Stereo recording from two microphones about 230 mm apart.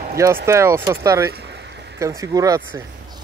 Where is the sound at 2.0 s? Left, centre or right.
Centre.